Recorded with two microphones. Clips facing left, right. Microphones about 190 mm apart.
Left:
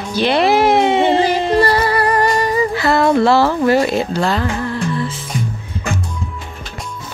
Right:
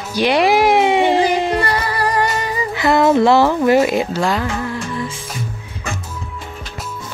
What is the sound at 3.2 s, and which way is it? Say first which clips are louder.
Speech: even; 15° right (ahead or behind).